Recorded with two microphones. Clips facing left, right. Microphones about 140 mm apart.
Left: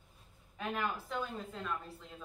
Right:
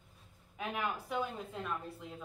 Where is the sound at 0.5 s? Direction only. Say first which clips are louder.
Even; 10° right (ahead or behind).